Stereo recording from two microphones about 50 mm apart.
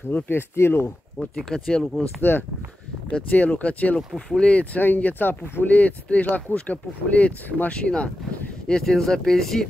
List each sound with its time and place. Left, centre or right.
0.1 s speech: left
1.2 s speech: centre
2.3 s speech: left
3.1 s speech: left
4.7 s speech: left
7.7 s speech: left
8.6 s speech: centre